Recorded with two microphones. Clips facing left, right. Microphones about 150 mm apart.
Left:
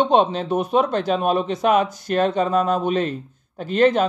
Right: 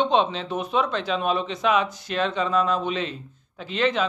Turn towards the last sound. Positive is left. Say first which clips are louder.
# left 7 dB
turn(degrees=45)  # may be behind; listen again after turning